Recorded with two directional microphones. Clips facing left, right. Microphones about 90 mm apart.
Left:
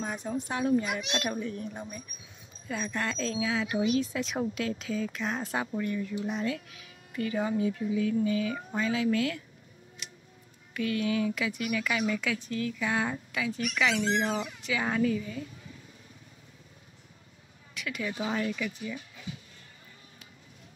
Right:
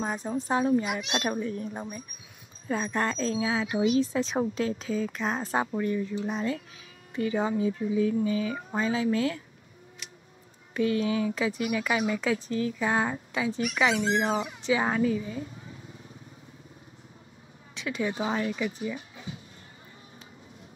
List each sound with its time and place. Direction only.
0.0 s speech: 35° right (ahead or behind)
10.7 s speech: 30° right (ahead or behind)
17.7 s speech: 30° right (ahead or behind)